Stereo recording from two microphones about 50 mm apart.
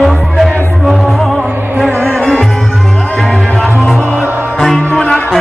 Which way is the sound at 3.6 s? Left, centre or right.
Centre.